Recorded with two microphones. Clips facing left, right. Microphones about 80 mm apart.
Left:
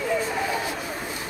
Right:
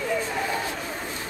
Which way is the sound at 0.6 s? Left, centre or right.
Centre.